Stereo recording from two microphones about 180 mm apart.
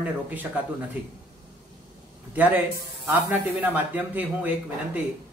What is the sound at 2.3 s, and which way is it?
Speech, 10° right (ahead or behind).